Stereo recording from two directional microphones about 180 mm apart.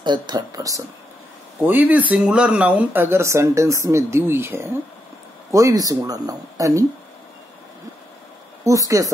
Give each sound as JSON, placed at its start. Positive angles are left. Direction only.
{"t": 0.0, "sound": "speech", "side_deg": -25}
{"t": 8.6, "sound": "speech", "side_deg": -20}